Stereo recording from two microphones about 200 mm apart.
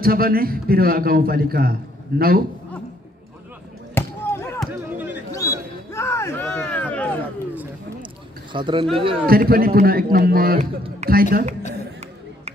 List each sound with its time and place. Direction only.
0.0 s a man's voice: 50° right (ahead or behind)
3.9 s basketball bounce: 10° left (ahead or behind)
4.6 s a sound: 10° right (ahead or behind)
5.3 s a sound: 15° left (ahead or behind)
8.5 s speech: 25° right (ahead or behind)
9.2 s a man's voice: 45° right (ahead or behind)
11.0 s speech: 35° right (ahead or behind)